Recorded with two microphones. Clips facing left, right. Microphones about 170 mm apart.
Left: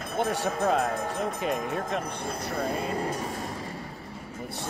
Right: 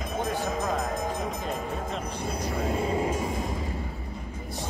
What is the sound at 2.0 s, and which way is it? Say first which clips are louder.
Speech: right 1 dB; 10° right (ahead or behind).